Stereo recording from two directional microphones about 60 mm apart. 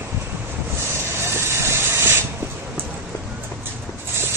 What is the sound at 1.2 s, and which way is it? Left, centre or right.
Mechanisms, right.